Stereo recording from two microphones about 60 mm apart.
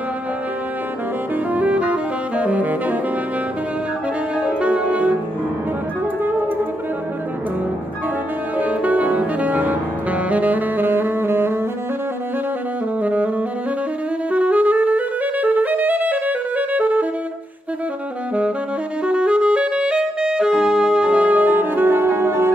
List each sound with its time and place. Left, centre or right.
1.3 s saxophone: right
4.4 s music: centre
8.5 s music: right
13.0 s saxophone: right
14.3 s music: right
19.0 s music: centre; by 22.5 s right